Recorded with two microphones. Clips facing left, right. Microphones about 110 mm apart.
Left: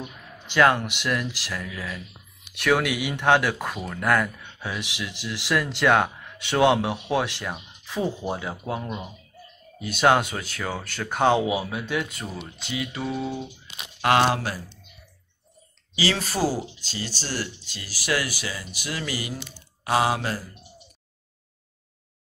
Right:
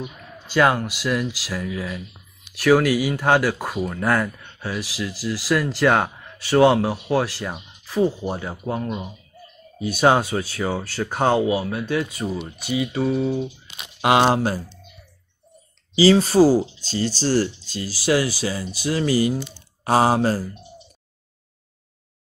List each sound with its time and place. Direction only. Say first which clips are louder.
0.6 s speech: right 1 dB; 5° right (ahead or behind)
9.8 s speech: right 2 dB; 10° right (ahead or behind)
11.4 s speech: right 4 dB; 10° left (ahead or behind)
12.0 s speech: right 6 dB; 10° right (ahead or behind)
14.2 s speech: right 5 dB; 30° right (ahead or behind)
15.9 s speech: right 11 dB; 30° right (ahead or behind)
17.2 s speech: right 13 dB; 40° right (ahead or behind)